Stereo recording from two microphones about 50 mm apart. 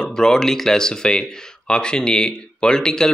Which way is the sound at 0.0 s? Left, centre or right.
Centre.